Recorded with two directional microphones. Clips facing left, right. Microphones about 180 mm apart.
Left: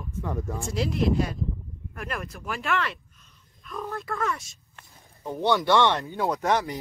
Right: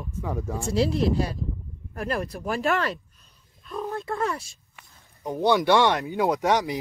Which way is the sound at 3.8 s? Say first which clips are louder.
Right 2 dB; 25° right (ahead or behind).